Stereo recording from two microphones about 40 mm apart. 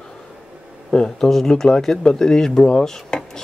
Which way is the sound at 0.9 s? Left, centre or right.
Centre.